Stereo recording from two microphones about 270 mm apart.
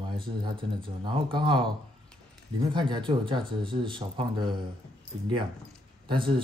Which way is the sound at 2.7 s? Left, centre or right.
Centre.